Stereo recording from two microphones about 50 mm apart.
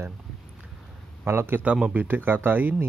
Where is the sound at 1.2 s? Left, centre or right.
Right.